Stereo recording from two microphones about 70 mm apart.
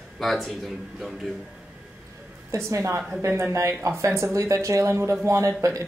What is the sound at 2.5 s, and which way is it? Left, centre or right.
A woman's voice, right.